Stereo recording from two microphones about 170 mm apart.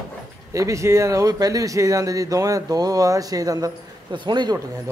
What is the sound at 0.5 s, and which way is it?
Speech, 20° right (ahead or behind).